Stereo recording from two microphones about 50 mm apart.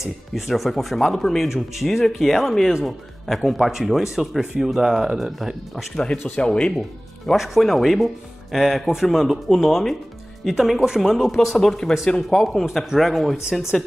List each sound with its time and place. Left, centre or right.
0.3 s speech: centre
6.2 s speech: centre
7.3 s speech: centre
11.5 s speech: centre
13.5 s speech: centre